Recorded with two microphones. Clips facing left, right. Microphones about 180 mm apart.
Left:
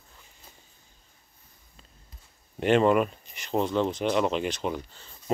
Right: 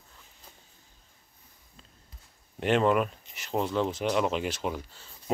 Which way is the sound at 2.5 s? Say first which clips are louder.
Left 3 dB; centre (ahead or behind).